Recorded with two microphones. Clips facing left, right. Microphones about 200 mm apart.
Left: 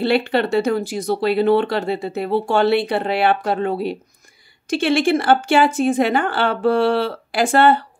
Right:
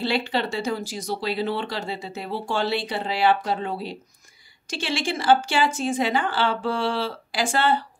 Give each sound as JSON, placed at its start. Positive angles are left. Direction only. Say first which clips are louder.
{"t": 0.0, "sound": "speech", "louder": "left 7 dB", "side_deg": 60}